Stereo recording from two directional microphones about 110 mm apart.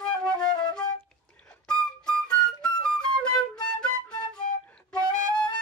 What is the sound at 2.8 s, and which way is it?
Flute, 10° left (ahead or behind).